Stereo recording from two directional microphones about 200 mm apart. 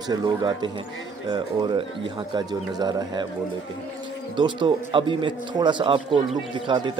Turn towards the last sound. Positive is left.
turn(degrees=-25)  # may be behind; listen again after turning